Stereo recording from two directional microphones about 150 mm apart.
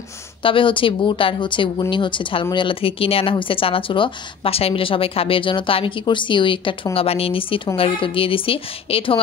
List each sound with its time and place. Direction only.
0.4 s speech: 35° left (ahead or behind)